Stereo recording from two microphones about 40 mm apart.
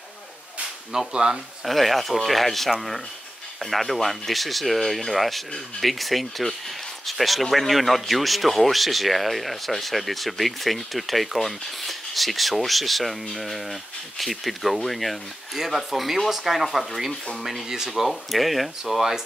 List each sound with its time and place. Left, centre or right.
0.9 s speech: centre
1.6 s speech: centre
3.7 s speech: centre
18.3 s speech: centre